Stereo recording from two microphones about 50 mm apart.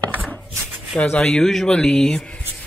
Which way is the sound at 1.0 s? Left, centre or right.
Left.